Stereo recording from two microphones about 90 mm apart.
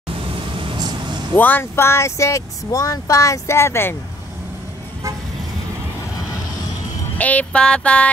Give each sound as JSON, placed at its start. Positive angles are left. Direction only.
{"t": 0.7, "sound": "vehicle", "side_deg": -50}
{"t": 1.3, "sound": "speech", "side_deg": 20}
{"t": 7.2, "sound": "music", "side_deg": 15}